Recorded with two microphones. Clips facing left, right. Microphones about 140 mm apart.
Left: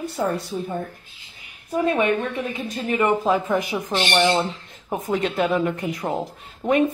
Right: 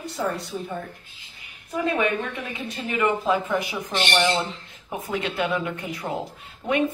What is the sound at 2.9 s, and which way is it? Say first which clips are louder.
Speech: left 3 dB; 35° left (ahead or behind).